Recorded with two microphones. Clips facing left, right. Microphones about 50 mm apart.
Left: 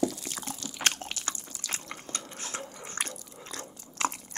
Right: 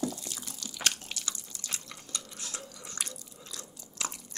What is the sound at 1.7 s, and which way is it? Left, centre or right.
Drip, left.